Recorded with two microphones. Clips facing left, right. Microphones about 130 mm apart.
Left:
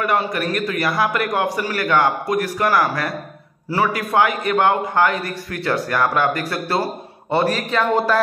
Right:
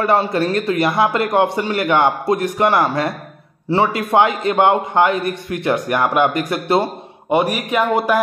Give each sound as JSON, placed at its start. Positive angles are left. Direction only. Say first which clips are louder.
{"t": 0.0, "sound": "a man's voice", "louder": "right 4 dB", "side_deg": -30}